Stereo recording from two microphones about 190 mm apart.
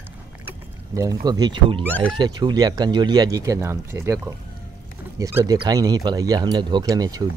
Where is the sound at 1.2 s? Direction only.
20° right (ahead or behind).